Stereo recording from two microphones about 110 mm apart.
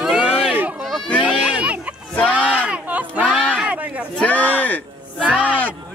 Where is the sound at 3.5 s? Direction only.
10° right (ahead or behind).